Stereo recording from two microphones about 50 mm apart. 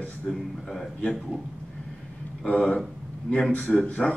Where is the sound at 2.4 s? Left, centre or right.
Left.